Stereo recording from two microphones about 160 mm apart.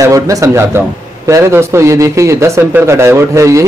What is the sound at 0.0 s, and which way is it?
A man's voice, 20° right (ahead or behind).